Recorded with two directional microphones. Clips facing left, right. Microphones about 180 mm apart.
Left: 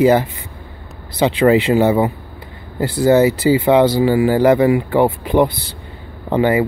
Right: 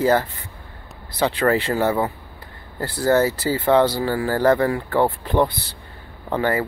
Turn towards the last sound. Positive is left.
turn(degrees=15)  # may be behind; listen again after turning